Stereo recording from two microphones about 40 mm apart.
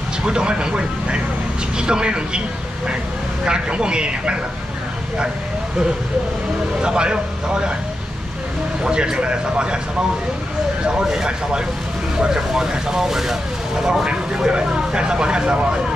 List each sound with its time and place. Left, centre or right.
0.2 s speech: right
3.4 s speech: right
6.8 s speech: right
8.8 s speech: centre
10.9 s speech: centre